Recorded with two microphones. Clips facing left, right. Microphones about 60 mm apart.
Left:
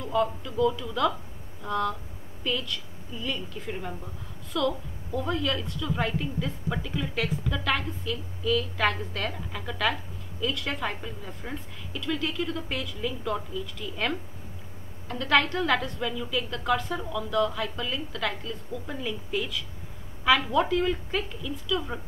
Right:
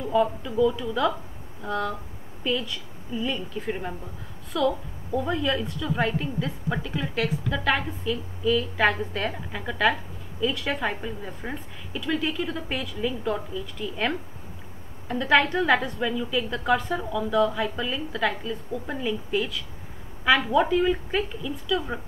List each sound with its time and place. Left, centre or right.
0.1 s a woman's voice: centre
3.6 s speech: right
4.5 s a woman's voice: centre
20.5 s a woman's voice: centre